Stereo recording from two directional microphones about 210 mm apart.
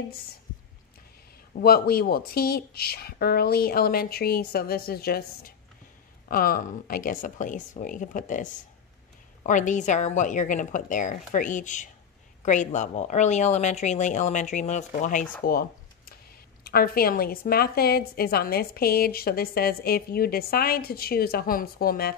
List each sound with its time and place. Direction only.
1.5 s a woman's voice: 45° left (ahead or behind)
16.6 s a woman's voice: 45° left (ahead or behind)